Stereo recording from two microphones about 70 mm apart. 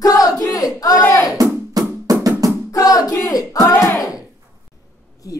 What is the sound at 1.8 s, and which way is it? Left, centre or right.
Music, right.